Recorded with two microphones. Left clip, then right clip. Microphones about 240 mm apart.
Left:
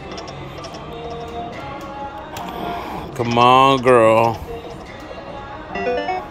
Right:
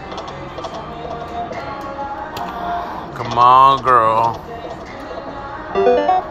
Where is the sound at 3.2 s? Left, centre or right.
Left.